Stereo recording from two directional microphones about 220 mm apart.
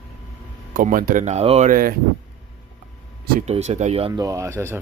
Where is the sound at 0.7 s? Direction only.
40° right (ahead or behind).